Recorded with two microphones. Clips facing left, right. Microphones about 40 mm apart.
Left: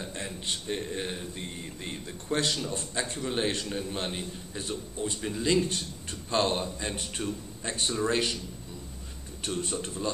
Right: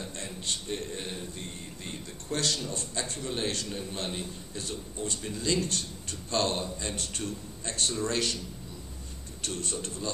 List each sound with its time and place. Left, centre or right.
0.0 s mantra: centre
2.8 s a man's voice: left
9.4 s a man's voice: centre